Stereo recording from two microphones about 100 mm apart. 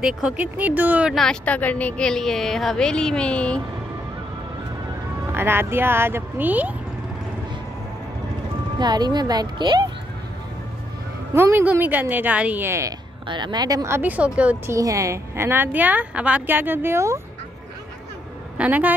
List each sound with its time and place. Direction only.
0.0 s speech: 10° right (ahead or behind)
1.1 s a woman's voice: 5° left (ahead or behind)
5.3 s a woman's voice: 25° right (ahead or behind)
8.7 s speech: 45° right (ahead or behind)
11.3 s a woman's voice: 25° right (ahead or behind)
13.3 s speech: 45° right (ahead or behind)
13.8 s speech: 20° right (ahead or behind)
14.7 s a woman's voice: 35° right (ahead or behind)
18.6 s speech: 15° right (ahead or behind)